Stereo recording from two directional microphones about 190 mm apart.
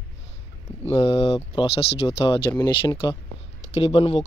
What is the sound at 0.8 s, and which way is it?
Speech, 30° left (ahead or behind).